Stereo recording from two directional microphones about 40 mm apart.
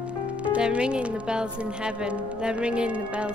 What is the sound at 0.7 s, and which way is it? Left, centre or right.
A woman's voice, right.